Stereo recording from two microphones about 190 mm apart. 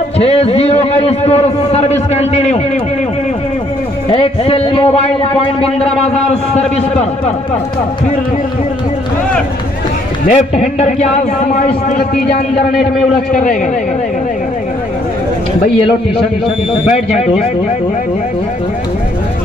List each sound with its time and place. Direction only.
0.2 s a man's voice: 30° left (ahead or behind)
4.1 s a man's voice: 30° left (ahead or behind)
10.2 s a man's voice: 35° left (ahead or behind)
13.3 s a man's voice: 40° left (ahead or behind)